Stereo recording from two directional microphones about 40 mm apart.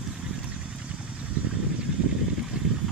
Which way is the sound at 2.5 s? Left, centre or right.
Right.